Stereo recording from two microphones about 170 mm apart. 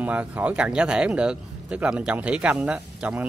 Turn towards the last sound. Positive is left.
turn(degrees=-10)  # may be behind; listen again after turning